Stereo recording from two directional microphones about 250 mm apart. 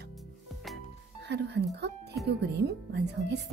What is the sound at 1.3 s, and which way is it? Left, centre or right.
Speech, right.